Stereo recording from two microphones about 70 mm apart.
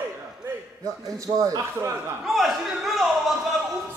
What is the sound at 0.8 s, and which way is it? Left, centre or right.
A man's voice, right.